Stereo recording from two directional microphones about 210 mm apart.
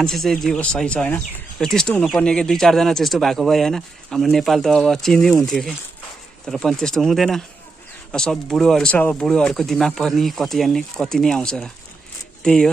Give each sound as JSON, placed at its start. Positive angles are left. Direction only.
{"t": 0.0, "sound": "speech", "side_deg": 0}